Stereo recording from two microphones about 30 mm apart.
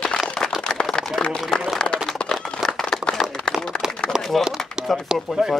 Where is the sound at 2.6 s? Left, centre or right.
Centre.